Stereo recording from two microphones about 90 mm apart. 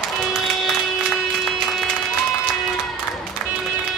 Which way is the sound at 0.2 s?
Centre (ahead or behind).